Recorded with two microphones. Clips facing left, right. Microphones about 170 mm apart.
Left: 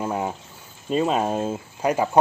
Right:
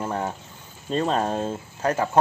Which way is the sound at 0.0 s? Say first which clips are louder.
Left 2 dB; 10° left (ahead or behind).